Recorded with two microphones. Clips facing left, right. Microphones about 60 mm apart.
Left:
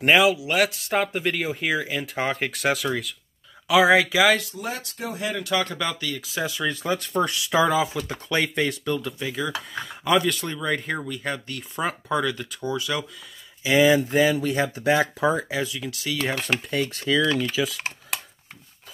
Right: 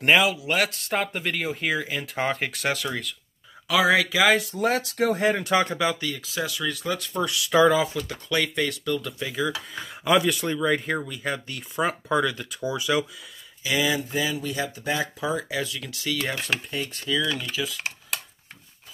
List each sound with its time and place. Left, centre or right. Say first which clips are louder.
0.0 s speech: left 2 dB; centre
4.5 s speech: right 8 dB; right
5.2 s speech: left 1 dB; right
5.8 s speech: right 3 dB; centre
6.4 s speech: left 2 dB; centre
6.8 s speech: left 4 dB; left
7.5 s speech: right 2 dB; centre
8.1 s speech: left 1 dB; left
9.0 s speech: right 1 dB; centre
13.7 s speech: left 7 dB; left
14.0 s speech: left 7 dB; left
15.5 s speech: left 2 dB; centre
15.9 s speech: left 1 dB; centre
17.6 s speech: left 5 dB; left